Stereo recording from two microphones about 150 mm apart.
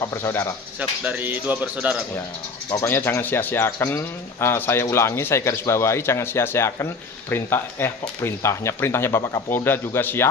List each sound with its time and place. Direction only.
0.0 s speech: 15° left (ahead or behind)
0.7 s speech: 10° right (ahead or behind)
2.7 s speech: 15° left (ahead or behind)